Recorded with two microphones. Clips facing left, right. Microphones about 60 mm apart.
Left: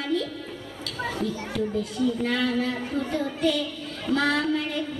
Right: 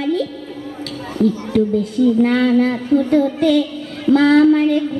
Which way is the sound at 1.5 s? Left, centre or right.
Right.